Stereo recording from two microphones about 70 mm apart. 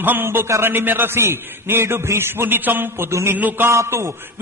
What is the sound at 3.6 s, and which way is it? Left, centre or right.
Mantra, right.